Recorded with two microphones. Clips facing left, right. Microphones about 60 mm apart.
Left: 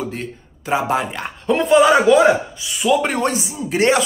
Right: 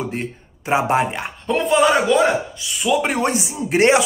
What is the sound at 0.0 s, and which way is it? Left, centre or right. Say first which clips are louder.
Speech: right 1 dB; right.